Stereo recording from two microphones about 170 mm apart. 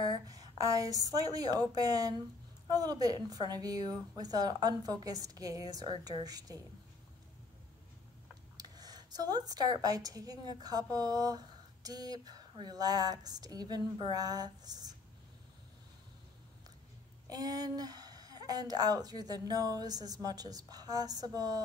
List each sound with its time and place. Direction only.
0.3 s a woman's voice: 20° right (ahead or behind)
8.5 s a woman's voice: 25° right (ahead or behind)
17.3 s a woman's voice: 20° right (ahead or behind)